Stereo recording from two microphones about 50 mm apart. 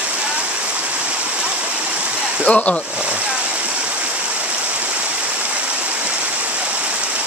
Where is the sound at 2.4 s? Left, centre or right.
Left.